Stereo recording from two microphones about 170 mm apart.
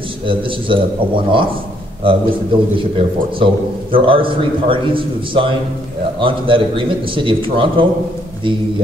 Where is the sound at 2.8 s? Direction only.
30° right (ahead or behind).